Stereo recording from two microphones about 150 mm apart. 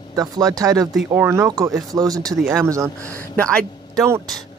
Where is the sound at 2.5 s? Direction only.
20° right (ahead or behind).